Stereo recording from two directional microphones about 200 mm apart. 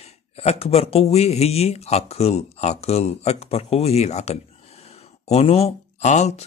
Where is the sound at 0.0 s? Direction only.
30° left (ahead or behind).